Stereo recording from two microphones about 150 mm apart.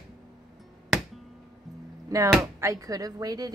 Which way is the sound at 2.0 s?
20° right (ahead or behind).